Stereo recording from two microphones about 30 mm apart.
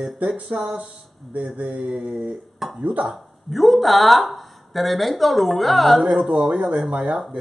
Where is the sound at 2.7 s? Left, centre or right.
Right.